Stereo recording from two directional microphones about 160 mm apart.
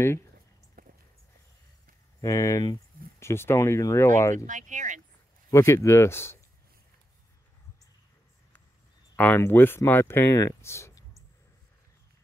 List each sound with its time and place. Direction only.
0.8 s a sound: 65° right (ahead or behind)
2.2 s speech: 20° left (ahead or behind)
4.5 s speech: 50° right (ahead or behind)
5.5 s speech: 20° left (ahead or behind)
9.1 s speech: 10° left (ahead or behind)